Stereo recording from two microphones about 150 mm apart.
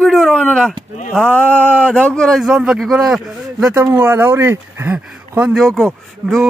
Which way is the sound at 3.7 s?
15° right (ahead or behind).